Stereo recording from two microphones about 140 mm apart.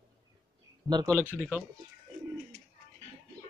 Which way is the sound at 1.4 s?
10° right (ahead or behind).